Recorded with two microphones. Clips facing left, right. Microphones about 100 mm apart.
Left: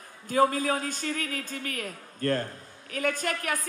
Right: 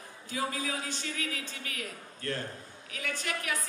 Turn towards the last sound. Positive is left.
turn(degrees=45)  # may be behind; listen again after turning